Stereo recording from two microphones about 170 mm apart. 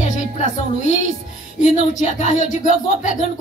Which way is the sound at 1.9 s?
45° left (ahead or behind).